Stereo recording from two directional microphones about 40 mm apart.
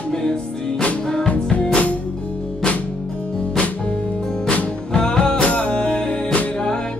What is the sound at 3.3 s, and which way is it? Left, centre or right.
Music, left.